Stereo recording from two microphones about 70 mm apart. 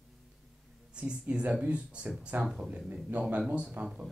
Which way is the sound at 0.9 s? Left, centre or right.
Centre.